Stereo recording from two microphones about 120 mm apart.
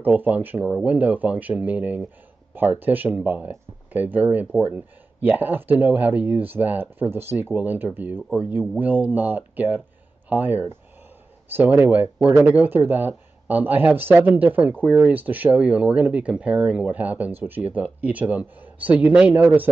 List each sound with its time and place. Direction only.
0.0 s speech: 15° right (ahead or behind)